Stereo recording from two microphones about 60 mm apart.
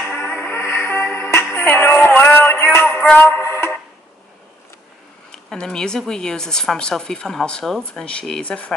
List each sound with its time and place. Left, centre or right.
0.1 s music: left
2.0 s a sound: left
2.5 s music: left
2.9 s music: left
3.3 s music: left
5.3 s speech: centre